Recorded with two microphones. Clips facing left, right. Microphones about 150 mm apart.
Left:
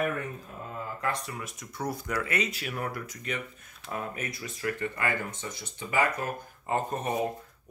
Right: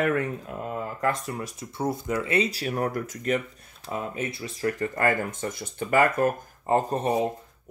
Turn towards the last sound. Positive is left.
turn(degrees=-30)  # may be behind; listen again after turning